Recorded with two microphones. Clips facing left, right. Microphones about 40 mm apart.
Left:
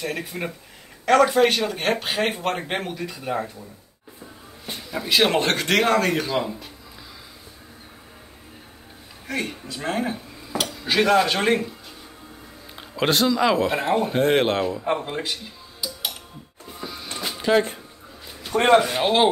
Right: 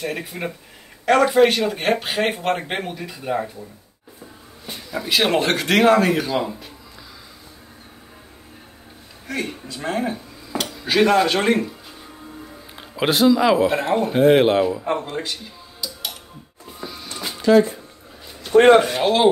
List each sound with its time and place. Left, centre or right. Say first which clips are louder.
0.0 s speech: right 2 dB; centre
4.6 s speech: right 1 dB; centre
9.3 s speech: right 1 dB; centre
12.7 s speech: right 1 dB; centre
14.9 s a man's voice: right 1 dB; centre
15.8 s tick-tock: even; centre
16.8 s music: right 1 dB; centre
17.5 s a man's voice: right 5 dB; centre
18.5 s speech: right 8 dB; centre
18.9 s speech: right 1 dB; left